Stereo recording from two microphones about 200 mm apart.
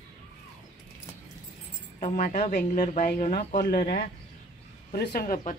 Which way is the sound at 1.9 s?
35° left (ahead or behind).